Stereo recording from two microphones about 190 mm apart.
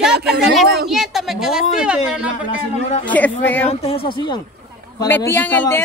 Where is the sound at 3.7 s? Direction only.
30° left (ahead or behind).